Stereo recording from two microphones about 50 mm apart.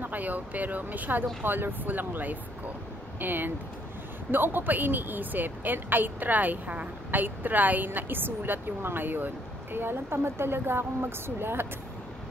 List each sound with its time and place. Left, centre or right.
0.0 s a woman's voice: right